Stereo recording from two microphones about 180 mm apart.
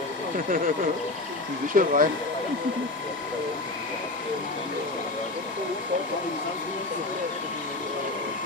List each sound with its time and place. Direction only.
1.7 s speech: 50° right (ahead or behind)